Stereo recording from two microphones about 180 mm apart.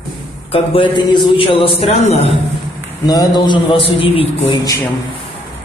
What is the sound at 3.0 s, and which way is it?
A man's voice, 20° left (ahead or behind).